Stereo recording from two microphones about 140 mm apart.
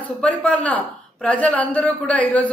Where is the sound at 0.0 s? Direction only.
10° left (ahead or behind).